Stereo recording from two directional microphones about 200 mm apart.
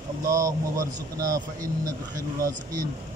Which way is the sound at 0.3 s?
15° right (ahead or behind).